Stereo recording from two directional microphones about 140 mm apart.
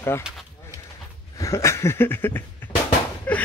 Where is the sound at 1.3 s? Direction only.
20° left (ahead or behind).